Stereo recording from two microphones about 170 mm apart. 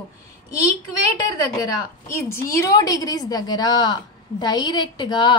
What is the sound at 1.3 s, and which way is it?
A woman's voice, 20° left (ahead or behind).